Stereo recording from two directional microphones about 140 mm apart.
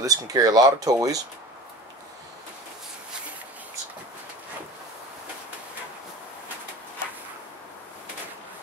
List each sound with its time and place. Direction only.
0.0 s speech: 25° right (ahead or behind)